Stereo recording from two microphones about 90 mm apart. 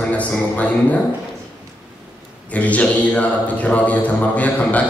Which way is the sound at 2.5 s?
15° left (ahead or behind).